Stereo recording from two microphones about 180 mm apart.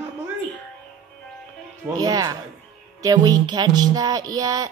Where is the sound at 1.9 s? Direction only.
20° right (ahead or behind).